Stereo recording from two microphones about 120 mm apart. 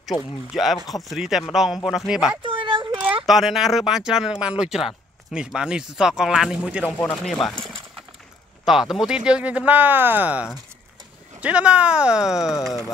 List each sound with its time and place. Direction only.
0.5 s speech: centre (ahead or behind)
2.4 s a sound: 45° right (ahead or behind)
3.3 s speech: centre (ahead or behind)
7.2 s speech: 5° left (ahead or behind)
7.6 s a sound: 45° right (ahead or behind)
8.6 s speech: centre (ahead or behind)